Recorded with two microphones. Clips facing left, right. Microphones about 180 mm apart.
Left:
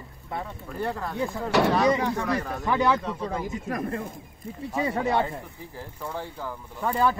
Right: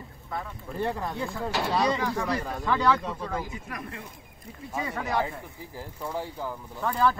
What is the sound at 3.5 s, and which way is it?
Speech, 45° left (ahead or behind).